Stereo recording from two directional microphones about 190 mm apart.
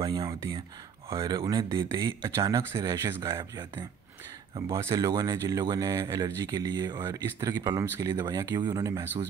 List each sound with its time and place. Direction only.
0.0 s speech: 20° right (ahead or behind)
4.6 s speech: 15° right (ahead or behind)